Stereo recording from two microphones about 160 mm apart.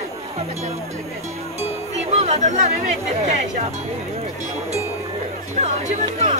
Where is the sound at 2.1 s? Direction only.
45° right (ahead or behind).